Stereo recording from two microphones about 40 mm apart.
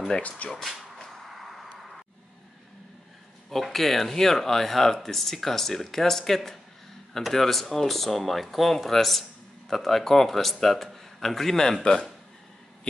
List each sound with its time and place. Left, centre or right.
0.5 s speech: centre
1.1 s a sound: centre
3.4 s speech: centre
11.8 s speech: left